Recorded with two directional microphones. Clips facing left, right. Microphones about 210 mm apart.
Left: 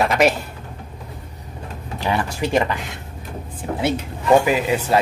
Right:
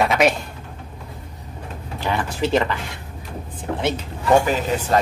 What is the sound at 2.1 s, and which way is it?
Speech, 10° left (ahead or behind).